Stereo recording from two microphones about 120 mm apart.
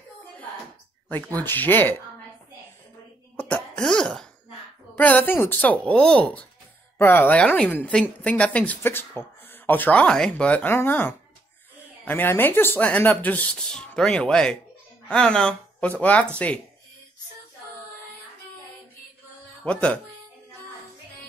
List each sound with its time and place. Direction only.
1.1 s speech: 15° left (ahead or behind)
3.3 s throat clearing: 15° left (ahead or behind)
4.9 s speech: 15° left (ahead or behind)
19.6 s speech: 10° left (ahead or behind)